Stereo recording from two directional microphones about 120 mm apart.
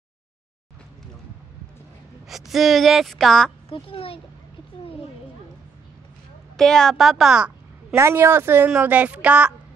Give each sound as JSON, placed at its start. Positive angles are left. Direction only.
{"t": 2.2, "sound": "speech", "side_deg": 0}
{"t": 3.6, "sound": "a child's voice", "side_deg": 50}
{"t": 6.5, "sound": "speech", "side_deg": 5}
{"t": 7.9, "sound": "speech", "side_deg": -20}